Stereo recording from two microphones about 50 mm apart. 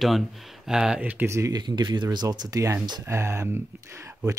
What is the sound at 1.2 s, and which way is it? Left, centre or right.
Speech, right.